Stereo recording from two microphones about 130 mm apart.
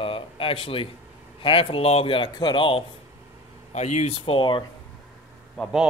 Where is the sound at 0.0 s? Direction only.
45° left (ahead or behind).